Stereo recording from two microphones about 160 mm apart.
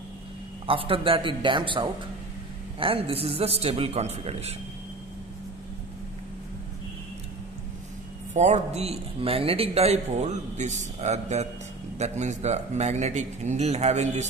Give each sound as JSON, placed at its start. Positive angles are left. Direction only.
{"t": 0.7, "sound": "a man's voice", "side_deg": -35}
{"t": 8.3, "sound": "a man's voice", "side_deg": -45}